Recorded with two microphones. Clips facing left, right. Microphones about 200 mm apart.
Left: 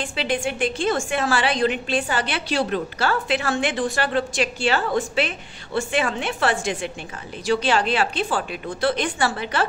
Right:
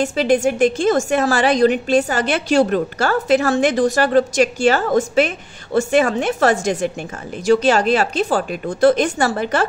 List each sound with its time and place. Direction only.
0.0 s a woman's voice: 45° right (ahead or behind)